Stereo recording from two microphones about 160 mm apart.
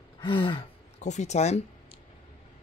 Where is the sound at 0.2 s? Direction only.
30° left (ahead or behind).